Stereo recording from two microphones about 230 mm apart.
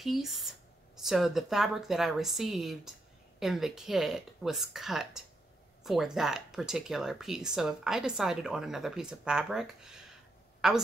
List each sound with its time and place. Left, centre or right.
0.0 s a woman's voice: centre